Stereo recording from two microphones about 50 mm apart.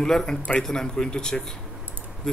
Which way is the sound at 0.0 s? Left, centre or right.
Centre.